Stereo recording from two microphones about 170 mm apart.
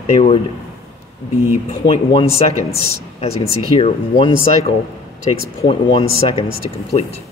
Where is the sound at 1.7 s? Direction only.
30° left (ahead or behind).